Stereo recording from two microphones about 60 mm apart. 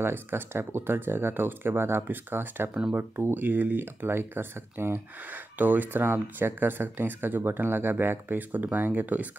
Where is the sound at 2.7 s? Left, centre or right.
Right.